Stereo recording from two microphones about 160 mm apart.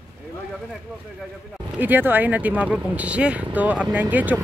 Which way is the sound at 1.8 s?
10° right (ahead or behind).